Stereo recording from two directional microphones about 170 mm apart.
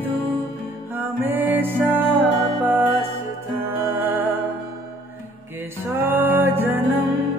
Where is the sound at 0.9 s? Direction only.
15° right (ahead or behind).